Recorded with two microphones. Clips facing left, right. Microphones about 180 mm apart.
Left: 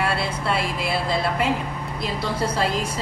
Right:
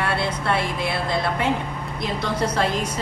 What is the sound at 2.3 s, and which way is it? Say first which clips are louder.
Speech: right 2 dB; 30° left (ahead or behind).